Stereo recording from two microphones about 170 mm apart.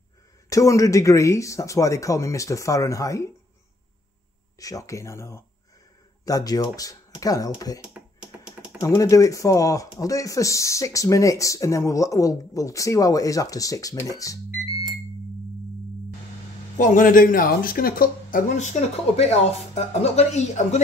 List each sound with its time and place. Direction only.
0.5 s speech: 20° left (ahead or behind)
4.6 s speech: 20° left (ahead or behind)
8.8 s speech: 20° left (ahead or behind)
16.7 s speech: 50° left (ahead or behind)